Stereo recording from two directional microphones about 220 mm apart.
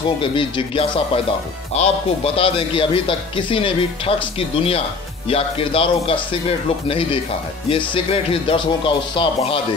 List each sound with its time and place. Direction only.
0.0 s a man's voice: 20° left (ahead or behind)